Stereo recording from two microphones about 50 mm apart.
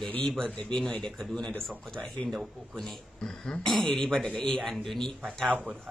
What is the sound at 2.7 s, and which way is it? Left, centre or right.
Speech, centre.